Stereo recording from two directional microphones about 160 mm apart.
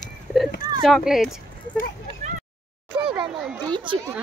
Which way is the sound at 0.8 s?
Centre (ahead or behind).